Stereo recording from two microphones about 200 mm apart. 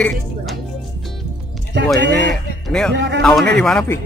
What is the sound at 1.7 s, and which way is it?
Speech, 60° right (ahead or behind).